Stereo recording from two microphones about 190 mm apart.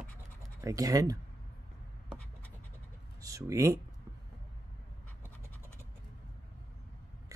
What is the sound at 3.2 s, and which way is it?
Speech, 15° right (ahead or behind).